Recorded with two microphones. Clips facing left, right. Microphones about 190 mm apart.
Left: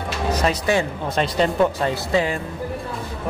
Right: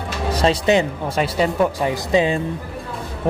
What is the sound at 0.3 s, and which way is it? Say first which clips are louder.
Speech: right 4 dB; 30° right (ahead or behind).